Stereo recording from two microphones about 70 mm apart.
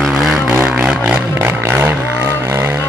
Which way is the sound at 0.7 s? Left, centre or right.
Centre.